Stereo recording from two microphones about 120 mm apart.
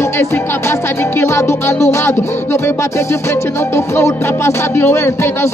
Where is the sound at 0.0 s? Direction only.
20° left (ahead or behind).